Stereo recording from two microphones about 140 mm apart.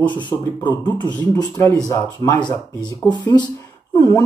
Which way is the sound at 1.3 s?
20° left (ahead or behind).